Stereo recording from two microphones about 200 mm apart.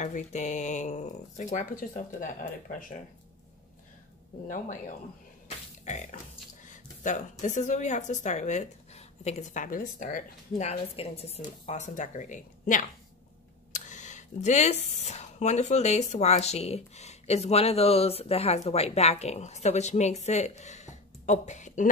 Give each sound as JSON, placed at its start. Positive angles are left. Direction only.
{"t": 0.0, "sound": "speech", "side_deg": 35}
{"t": 6.7, "sound": "speech", "side_deg": 40}